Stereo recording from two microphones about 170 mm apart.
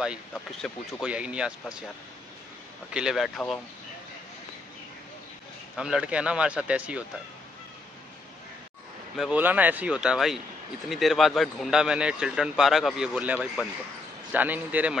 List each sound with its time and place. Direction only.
0.0 s speech: centre (ahead or behind)
2.9 s speech: 5° right (ahead or behind)
5.8 s speech: 5° right (ahead or behind)
9.1 s speech: 5° right (ahead or behind)